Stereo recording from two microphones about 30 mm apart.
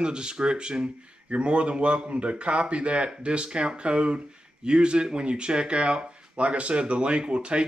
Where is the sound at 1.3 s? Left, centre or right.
Right.